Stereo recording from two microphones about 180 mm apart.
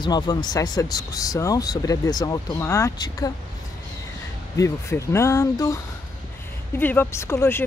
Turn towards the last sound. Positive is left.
turn(degrees=15)  # may be behind; listen again after turning